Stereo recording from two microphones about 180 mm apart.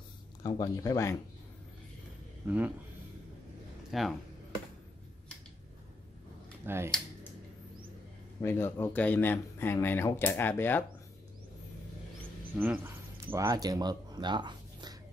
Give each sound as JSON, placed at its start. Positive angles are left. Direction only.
{"t": 0.4, "sound": "speech", "side_deg": 20}
{"t": 2.4, "sound": "speech", "side_deg": -10}
{"t": 3.9, "sound": "speech", "side_deg": 0}
{"t": 6.6, "sound": "speech", "side_deg": -15}
{"t": 8.4, "sound": "speech", "side_deg": 10}
{"t": 12.5, "sound": "speech", "side_deg": -10}